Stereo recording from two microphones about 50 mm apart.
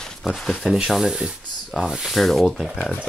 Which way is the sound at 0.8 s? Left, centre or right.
Centre.